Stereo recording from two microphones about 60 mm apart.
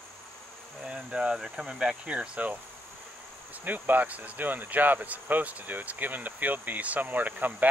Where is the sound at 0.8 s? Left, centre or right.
Centre.